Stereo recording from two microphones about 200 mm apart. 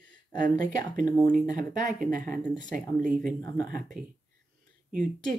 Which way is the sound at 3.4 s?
20° left (ahead or behind).